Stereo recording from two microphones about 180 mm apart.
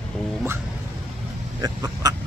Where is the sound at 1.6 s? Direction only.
20° right (ahead or behind).